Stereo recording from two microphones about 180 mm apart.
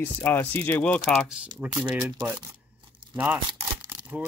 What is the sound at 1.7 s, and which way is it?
Speech, 25° right (ahead or behind).